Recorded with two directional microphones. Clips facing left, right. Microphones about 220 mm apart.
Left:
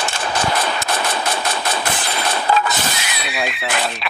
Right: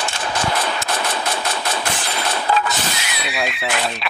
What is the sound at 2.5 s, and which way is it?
Vehicle, 45° left (ahead or behind).